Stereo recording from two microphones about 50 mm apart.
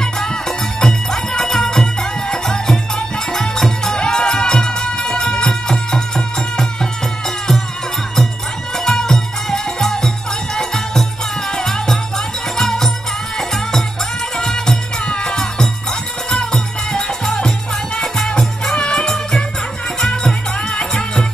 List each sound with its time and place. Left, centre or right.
0.0 s music: centre
8.7 s music: centre
15.0 s music: centre
16.5 s music: centre
18.8 s music: left
20.0 s music: centre